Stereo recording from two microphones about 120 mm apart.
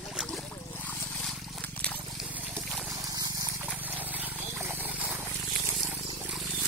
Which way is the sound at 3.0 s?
30° right (ahead or behind).